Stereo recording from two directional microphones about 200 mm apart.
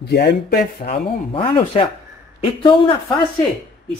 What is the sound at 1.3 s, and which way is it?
Speech, 25° left (ahead or behind).